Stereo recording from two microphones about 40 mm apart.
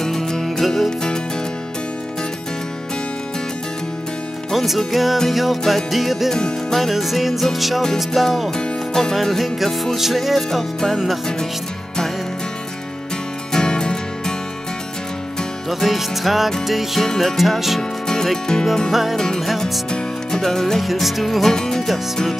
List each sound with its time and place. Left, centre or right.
0.0 s music: centre
0.8 s music: centre
4.5 s music: centre
7.8 s music: centre
8.5 s music: centre
9.1 s music: centre
13.5 s music: centre
15.7 s music: centre
18.0 s music: centre
18.9 s music: centre
19.1 s music: centre
20.8 s music: centre
21.8 s music: centre